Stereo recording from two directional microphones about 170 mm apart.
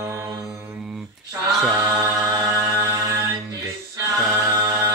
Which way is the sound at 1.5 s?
5° right (ahead or behind).